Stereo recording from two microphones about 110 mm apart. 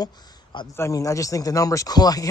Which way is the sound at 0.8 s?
30° left (ahead or behind).